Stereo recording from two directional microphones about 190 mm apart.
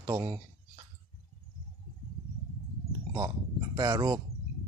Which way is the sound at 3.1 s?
20° right (ahead or behind).